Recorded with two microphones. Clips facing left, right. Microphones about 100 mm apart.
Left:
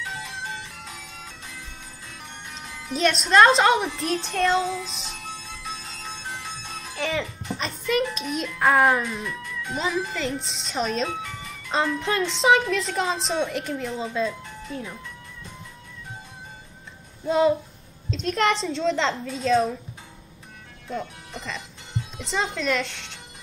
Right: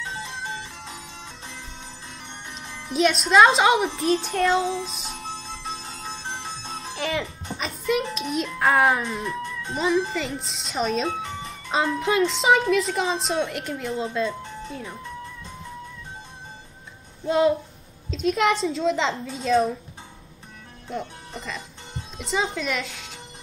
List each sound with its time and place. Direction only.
0.0 s music: 30° right (ahead or behind)
2.9 s a woman's voice: centre (ahead or behind)
4.2 s music: 10° right (ahead or behind)
4.6 s music: 30° right (ahead or behind)
7.0 s a child's voice: centre (ahead or behind)
9.2 s music: 30° right (ahead or behind)
10.1 s a woman's voice: centre (ahead or behind)
11.1 s music: 30° right (ahead or behind)
12.0 s a woman's voice: centre (ahead or behind)
17.3 s a woman's voice: centre (ahead or behind)
21.0 s speech: 30° right (ahead or behind)
22.2 s a woman's voice: centre (ahead or behind)